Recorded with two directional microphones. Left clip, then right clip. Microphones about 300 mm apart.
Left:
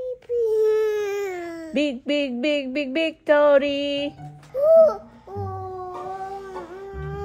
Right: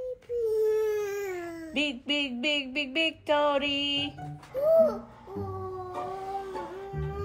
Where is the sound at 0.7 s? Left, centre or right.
Left.